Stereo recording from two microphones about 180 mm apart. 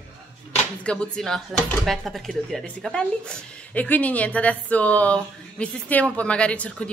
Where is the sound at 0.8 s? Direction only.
5° left (ahead or behind).